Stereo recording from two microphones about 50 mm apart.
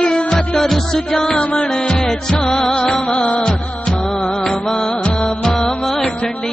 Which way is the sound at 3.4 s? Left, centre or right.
Centre.